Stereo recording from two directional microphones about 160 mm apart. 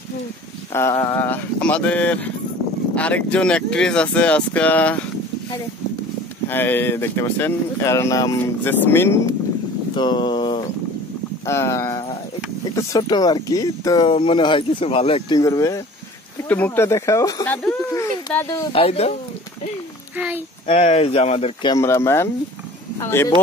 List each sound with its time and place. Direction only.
1.0 s speech: 15° left (ahead or behind)
6.5 s speech: 15° left (ahead or behind)
9.9 s speech: 30° left (ahead or behind)
11.4 s speech: 15° left (ahead or behind)
18.7 s speech: 35° left (ahead or behind)
20.6 s speech: 40° left (ahead or behind)
21.7 s speech: 15° left (ahead or behind)